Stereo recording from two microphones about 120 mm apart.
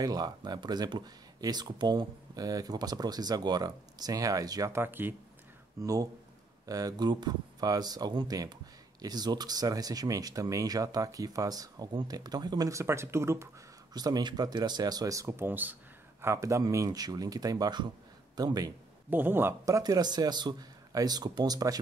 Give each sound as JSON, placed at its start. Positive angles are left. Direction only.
{"t": 0.0, "sound": "speech", "side_deg": -35}
{"t": 5.8, "sound": "speech", "side_deg": -30}
{"t": 13.9, "sound": "speech", "side_deg": -35}
{"t": 19.0, "sound": "speech", "side_deg": -15}